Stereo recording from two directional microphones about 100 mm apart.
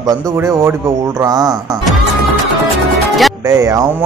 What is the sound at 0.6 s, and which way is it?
Speech, 25° right (ahead or behind).